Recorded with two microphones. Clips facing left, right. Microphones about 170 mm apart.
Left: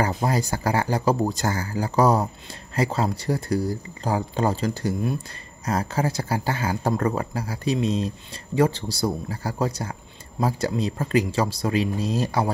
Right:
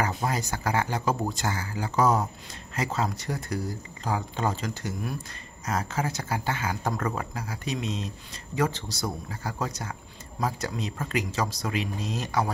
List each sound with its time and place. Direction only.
0.0 s speech: 35° left (ahead or behind)